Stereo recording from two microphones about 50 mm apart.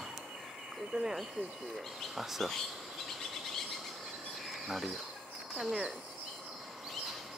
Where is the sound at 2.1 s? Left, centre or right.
Centre.